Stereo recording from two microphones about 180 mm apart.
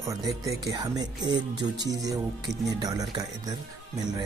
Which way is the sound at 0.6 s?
25° right (ahead or behind).